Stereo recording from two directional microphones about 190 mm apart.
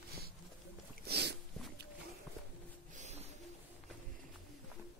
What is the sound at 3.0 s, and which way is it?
Music, 35° right (ahead or behind).